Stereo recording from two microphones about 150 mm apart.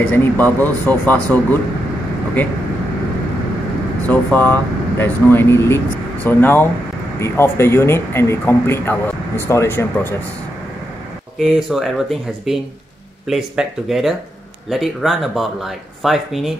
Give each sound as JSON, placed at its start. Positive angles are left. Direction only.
{"t": 0.1, "sound": "speech", "side_deg": 10}
{"t": 4.1, "sound": "speech", "side_deg": 10}
{"t": 11.3, "sound": "speech", "side_deg": 0}